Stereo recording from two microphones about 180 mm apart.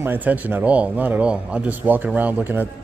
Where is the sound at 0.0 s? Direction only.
10° right (ahead or behind).